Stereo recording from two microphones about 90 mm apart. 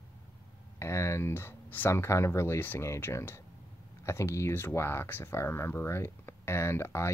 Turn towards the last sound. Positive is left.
turn(degrees=30)  # may be behind; listen again after turning